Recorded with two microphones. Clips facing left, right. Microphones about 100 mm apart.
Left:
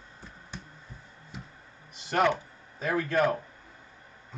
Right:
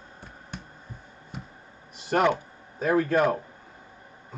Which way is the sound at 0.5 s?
60° right (ahead or behind).